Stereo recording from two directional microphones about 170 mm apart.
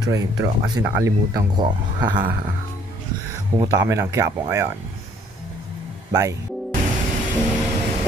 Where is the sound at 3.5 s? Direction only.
15° right (ahead or behind).